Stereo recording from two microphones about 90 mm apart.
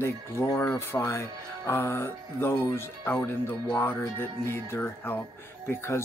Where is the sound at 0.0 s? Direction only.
30° left (ahead or behind).